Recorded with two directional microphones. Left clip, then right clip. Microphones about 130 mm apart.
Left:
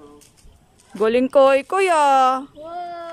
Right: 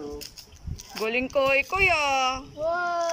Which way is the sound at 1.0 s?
60° left (ahead or behind).